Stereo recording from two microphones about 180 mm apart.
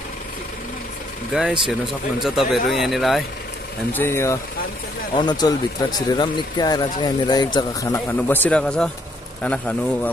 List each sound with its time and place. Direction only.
1.3 s speech: centre (ahead or behind)
3.9 s speech: 15° left (ahead or behind)